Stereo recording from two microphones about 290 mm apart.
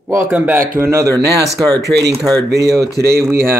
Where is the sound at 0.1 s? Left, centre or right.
Centre.